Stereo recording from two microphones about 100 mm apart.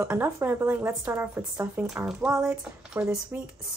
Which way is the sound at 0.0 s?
20° right (ahead or behind).